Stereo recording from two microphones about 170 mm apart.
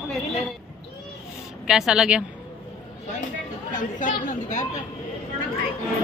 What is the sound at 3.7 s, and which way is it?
Speech, 50° left (ahead or behind).